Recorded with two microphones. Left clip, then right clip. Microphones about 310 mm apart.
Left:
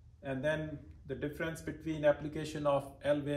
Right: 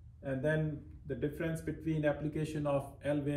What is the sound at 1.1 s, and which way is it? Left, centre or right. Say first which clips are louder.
Speech: right 1 dB; left.